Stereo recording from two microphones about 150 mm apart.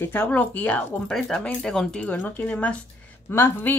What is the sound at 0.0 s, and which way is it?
Speech, 15° left (ahead or behind).